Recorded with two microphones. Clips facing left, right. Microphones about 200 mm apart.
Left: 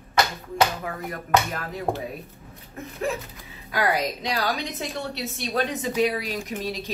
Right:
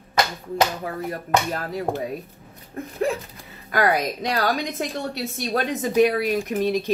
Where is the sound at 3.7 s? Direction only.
50° right (ahead or behind).